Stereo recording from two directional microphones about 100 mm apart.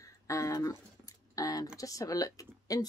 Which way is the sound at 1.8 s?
35° left (ahead or behind).